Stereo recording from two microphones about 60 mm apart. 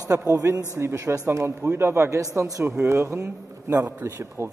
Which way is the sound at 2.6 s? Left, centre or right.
Right.